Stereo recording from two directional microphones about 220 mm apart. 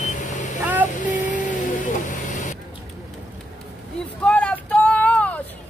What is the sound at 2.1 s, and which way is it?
Vehicle, 35° left (ahead or behind).